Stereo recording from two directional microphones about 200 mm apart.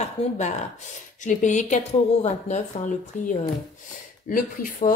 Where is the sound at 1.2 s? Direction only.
40° left (ahead or behind).